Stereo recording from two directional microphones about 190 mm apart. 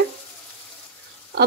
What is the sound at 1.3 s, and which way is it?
Speech, 55° right (ahead or behind).